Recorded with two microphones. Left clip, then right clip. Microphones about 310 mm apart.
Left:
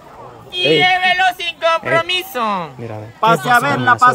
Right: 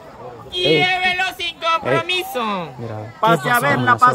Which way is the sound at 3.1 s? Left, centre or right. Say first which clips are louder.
Left 3 dB; left.